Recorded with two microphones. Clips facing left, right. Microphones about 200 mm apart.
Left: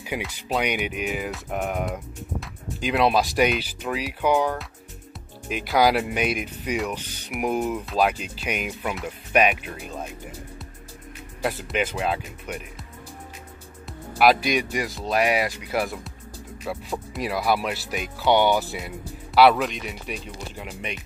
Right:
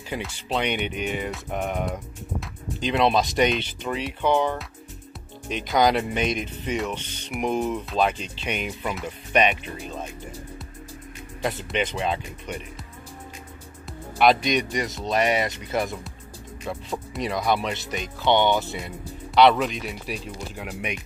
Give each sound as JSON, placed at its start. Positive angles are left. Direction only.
{"t": 0.1, "sound": "speech", "side_deg": 10}
{"t": 11.4, "sound": "speech", "side_deg": 5}
{"t": 13.8, "sound": "speech", "side_deg": 5}